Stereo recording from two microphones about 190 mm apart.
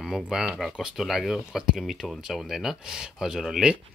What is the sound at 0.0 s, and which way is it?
Speech, centre (ahead or behind).